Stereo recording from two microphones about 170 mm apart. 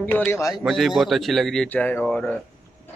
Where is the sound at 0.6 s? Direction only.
Centre (ahead or behind).